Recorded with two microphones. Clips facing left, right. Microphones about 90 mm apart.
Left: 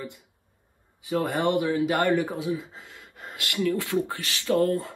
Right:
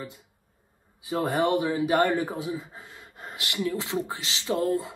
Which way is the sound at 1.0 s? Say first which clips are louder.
Even; 20° right (ahead or behind).